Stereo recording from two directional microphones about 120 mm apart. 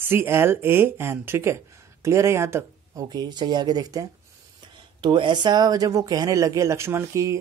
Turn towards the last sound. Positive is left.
turn(degrees=-25)  # may be behind; listen again after turning